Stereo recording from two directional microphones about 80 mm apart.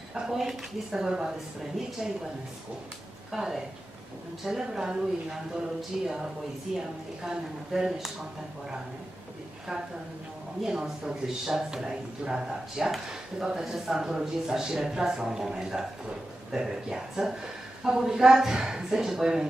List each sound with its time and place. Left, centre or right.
0.1 s speech: centre
3.3 s speech: centre
10.6 s speech: centre